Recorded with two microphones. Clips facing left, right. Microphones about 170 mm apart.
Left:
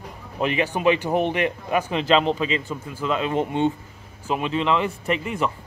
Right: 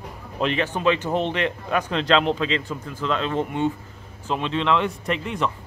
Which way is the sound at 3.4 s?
20° left (ahead or behind).